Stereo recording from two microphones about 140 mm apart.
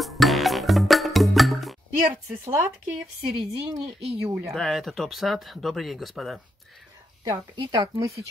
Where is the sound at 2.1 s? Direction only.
15° right (ahead or behind).